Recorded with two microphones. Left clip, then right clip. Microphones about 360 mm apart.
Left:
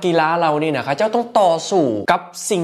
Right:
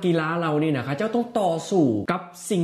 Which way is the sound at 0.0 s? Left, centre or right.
Left.